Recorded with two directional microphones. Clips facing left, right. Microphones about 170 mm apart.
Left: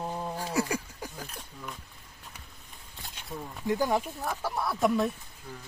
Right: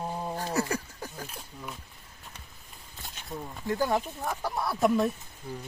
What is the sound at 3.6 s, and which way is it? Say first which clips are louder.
Speech: left 1 dB; 15° left (ahead or behind).